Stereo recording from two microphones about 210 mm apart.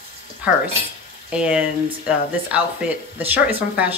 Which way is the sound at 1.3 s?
5° right (ahead or behind).